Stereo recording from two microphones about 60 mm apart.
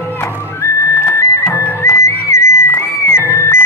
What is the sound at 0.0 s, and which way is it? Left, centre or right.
Music, left.